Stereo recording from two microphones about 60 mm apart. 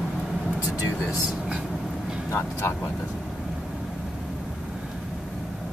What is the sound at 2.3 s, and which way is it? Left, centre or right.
Speech, left.